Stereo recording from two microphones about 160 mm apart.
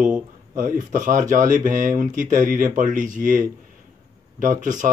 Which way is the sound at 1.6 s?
20° right (ahead or behind).